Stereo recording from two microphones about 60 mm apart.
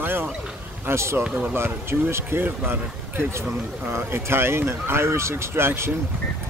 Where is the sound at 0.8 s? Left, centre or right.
Right.